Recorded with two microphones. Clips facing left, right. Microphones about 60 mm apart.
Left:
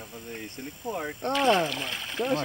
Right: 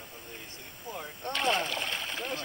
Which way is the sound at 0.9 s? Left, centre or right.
Left.